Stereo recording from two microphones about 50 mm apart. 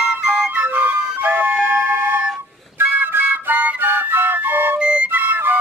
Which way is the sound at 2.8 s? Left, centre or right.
Right.